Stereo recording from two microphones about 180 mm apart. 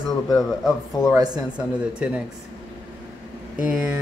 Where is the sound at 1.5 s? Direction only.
5° right (ahead or behind).